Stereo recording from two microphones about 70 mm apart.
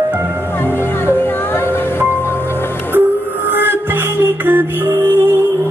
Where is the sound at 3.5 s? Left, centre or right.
Right.